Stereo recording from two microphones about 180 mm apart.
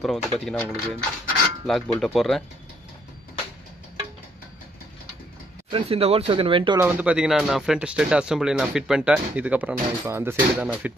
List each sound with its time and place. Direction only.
0.0 s speech: centre (ahead or behind)
5.7 s speech: 30° right (ahead or behind)
6.8 s speech: 10° right (ahead or behind)